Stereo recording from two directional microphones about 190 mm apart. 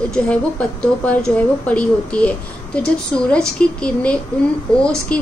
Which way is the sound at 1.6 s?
5° left (ahead or behind).